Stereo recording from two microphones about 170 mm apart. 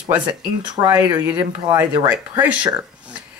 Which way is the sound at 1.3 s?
10° right (ahead or behind).